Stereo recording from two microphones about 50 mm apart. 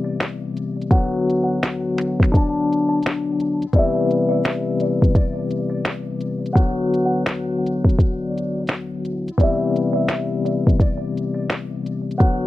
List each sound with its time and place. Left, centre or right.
1.1 s music: centre
6.5 s music: centre
9.4 s music: centre